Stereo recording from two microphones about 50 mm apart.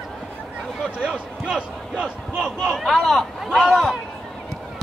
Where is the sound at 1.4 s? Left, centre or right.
Right.